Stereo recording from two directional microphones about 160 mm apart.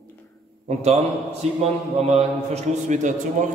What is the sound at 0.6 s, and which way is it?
A man's voice, 40° right (ahead or behind).